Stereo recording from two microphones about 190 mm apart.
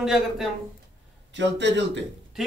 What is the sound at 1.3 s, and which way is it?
Speech, 70° right (ahead or behind).